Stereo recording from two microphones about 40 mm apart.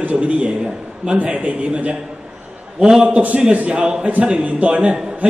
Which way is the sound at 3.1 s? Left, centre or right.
Right.